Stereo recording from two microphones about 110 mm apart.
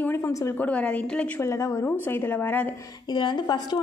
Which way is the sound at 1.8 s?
15° left (ahead or behind).